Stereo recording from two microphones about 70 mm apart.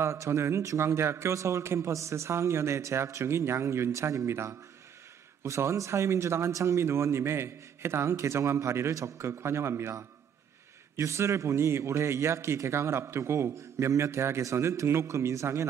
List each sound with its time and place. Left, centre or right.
0.0 s a man's voice: right
11.0 s a man's voice: right